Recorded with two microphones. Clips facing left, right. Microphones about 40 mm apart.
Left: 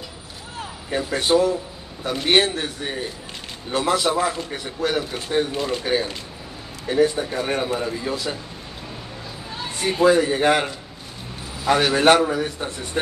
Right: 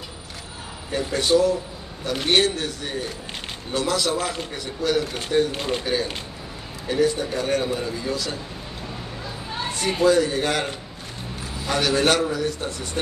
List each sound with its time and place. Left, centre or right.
0.8 s a man's voice: left
5.5 s speech: right
6.9 s a man's voice: left
9.8 s a man's voice: left